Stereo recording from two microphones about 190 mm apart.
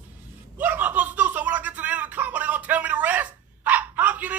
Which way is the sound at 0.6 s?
10° right (ahead or behind).